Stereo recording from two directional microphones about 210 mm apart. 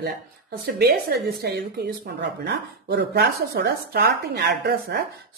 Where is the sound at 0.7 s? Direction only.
50° right (ahead or behind).